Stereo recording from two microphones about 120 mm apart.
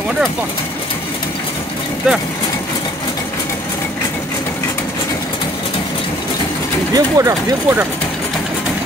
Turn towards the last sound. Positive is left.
turn(degrees=-25)  # may be behind; listen again after turning